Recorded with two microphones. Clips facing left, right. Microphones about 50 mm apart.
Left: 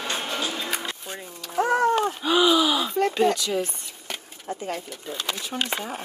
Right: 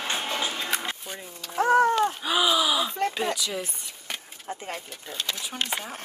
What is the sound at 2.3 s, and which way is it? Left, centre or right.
Gasp, centre.